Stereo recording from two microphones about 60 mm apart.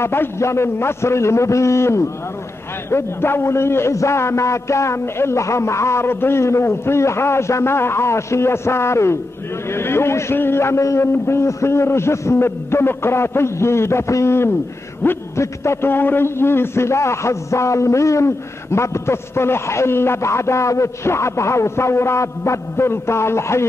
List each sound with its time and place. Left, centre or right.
0.0 s a man's voice: left
15.0 s a man's voice: left
15.3 s a man's voice: left